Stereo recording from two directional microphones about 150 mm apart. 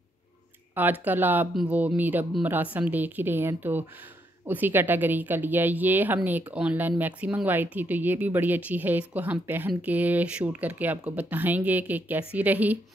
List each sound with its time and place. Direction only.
0.7 s speech: 10° right (ahead or behind)